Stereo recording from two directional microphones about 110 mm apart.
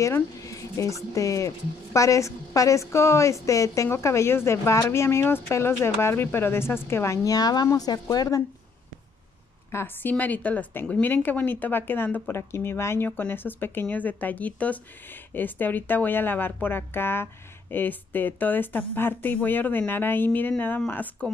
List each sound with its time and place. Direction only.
0.0 s a woman's voice: 30° left (ahead or behind)
9.7 s a woman's voice: 20° left (ahead or behind)